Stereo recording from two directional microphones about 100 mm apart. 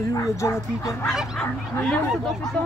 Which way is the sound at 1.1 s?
5° right (ahead or behind).